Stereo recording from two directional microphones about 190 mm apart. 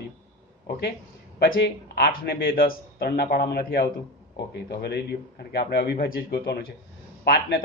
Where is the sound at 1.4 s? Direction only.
55° left (ahead or behind).